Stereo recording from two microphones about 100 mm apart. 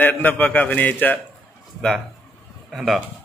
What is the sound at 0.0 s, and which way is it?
A man's voice, 20° left (ahead or behind).